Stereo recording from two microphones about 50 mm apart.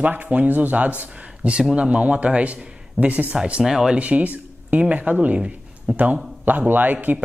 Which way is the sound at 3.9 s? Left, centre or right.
Right.